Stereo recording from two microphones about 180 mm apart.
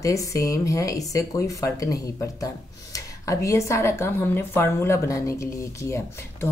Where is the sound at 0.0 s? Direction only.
15° left (ahead or behind).